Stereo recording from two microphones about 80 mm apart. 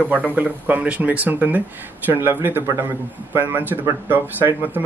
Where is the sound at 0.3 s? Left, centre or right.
Right.